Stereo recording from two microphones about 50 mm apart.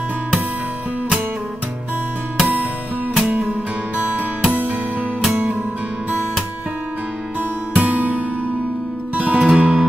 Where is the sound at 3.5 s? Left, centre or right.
Right.